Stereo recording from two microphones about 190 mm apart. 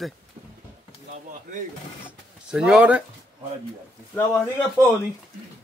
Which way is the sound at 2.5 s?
5° right (ahead or behind).